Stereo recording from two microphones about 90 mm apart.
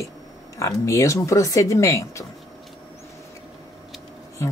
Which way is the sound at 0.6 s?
40° left (ahead or behind).